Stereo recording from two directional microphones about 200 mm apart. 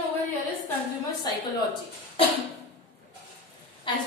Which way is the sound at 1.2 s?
20° left (ahead or behind).